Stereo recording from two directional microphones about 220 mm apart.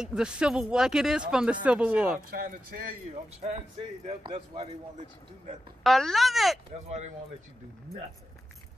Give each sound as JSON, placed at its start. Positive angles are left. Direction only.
{"t": 0.0, "sound": "speech", "side_deg": -5}
{"t": 2.3, "sound": "speech", "side_deg": -40}
{"t": 3.3, "sound": "speech", "side_deg": -25}
{"t": 5.9, "sound": "speech", "side_deg": 0}